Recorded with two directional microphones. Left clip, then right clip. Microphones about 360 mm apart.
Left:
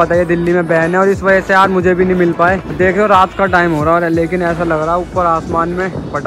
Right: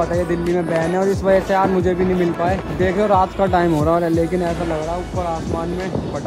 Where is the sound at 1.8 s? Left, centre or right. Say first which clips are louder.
Left 6 dB; right.